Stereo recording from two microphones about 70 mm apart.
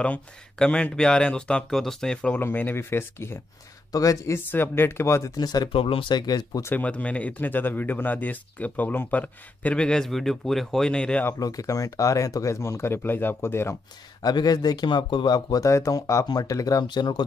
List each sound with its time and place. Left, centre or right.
0.0 s speech: centre
2.4 s speech: left
3.9 s speech: left
4.5 s speech: left
5.4 s speech: left
6.7 s speech: left; by 10.9 s centre
10.9 s speech: centre
11.3 s speech: left
14.2 s speech: left
15.6 s speech: left
16.3 s speech: left